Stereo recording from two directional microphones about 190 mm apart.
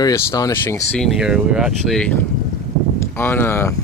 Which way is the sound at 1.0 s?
Centre (ahead or behind).